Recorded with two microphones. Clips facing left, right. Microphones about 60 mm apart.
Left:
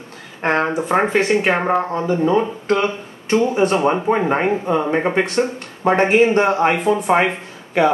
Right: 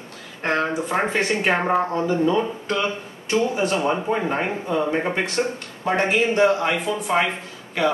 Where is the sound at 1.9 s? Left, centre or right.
Left.